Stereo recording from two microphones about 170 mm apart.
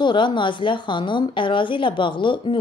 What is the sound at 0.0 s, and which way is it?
Speech, 30° left (ahead or behind).